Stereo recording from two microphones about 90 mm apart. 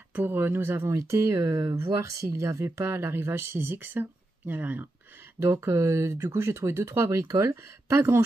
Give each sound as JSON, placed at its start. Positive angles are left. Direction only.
{"t": 0.1, "sound": "speech", "side_deg": -25}
{"t": 5.4, "sound": "speech", "side_deg": -30}